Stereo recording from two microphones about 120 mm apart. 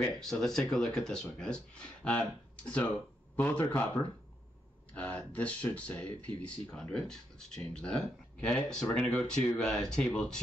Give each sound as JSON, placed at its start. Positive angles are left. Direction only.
{"t": 0.2, "sound": "speech", "side_deg": 5}